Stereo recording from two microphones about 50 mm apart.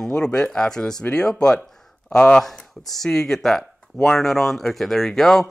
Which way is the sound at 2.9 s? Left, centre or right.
Centre.